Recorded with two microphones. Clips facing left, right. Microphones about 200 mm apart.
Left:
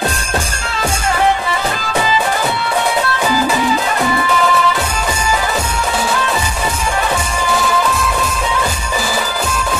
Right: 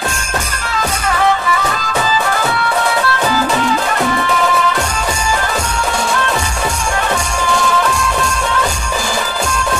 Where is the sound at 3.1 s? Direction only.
10° left (ahead or behind).